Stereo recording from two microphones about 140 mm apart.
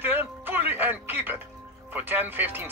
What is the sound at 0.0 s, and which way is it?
Music, 15° right (ahead or behind).